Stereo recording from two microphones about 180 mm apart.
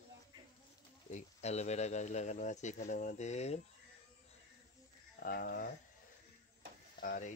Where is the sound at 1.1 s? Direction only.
40° left (ahead or behind).